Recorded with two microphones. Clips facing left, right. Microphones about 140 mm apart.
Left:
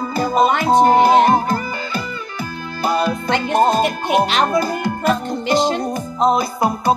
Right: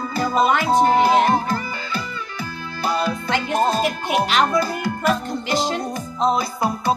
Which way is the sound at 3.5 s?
50° left (ahead or behind).